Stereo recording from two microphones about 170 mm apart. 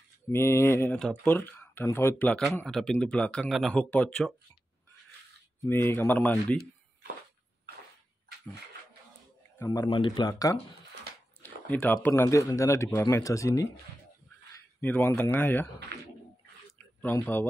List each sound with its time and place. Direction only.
0.3 s speech: 15° left (ahead or behind)
5.7 s speech: 10° left (ahead or behind)
9.6 s speech: 25° left (ahead or behind)
11.4 s a man's voice: 10° left (ahead or behind)
15.9 s bird: 75° right (ahead or behind)
16.7 s a sound: 10° left (ahead or behind)